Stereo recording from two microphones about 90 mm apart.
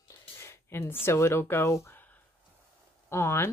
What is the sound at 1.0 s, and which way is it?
Speech, 30° left (ahead or behind).